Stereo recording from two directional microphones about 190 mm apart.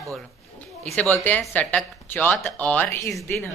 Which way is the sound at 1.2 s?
10° left (ahead or behind).